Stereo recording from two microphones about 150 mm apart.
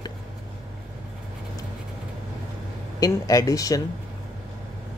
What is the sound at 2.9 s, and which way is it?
Speech, 25° left (ahead or behind).